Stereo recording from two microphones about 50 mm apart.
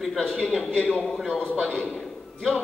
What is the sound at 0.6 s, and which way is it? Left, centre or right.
Speech, left.